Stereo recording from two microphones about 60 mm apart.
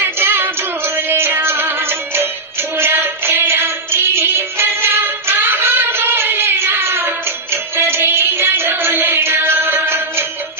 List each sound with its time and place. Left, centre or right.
0.0 s music: right